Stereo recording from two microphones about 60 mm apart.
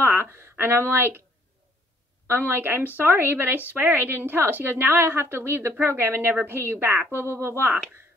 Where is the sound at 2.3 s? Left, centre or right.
Right.